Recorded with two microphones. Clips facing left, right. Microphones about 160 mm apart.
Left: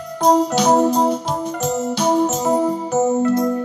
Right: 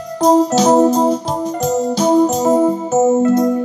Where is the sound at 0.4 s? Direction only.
40° right (ahead or behind).